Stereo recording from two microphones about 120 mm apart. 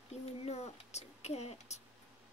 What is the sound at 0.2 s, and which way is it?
A child's voice, 65° left (ahead or behind).